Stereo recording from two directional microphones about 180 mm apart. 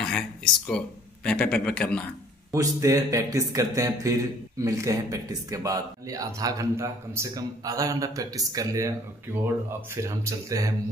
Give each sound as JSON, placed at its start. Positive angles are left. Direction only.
{"t": 0.0, "sound": "speech", "side_deg": 5}
{"t": 2.5, "sound": "speech", "side_deg": -15}
{"t": 10.0, "sound": "speech", "side_deg": -20}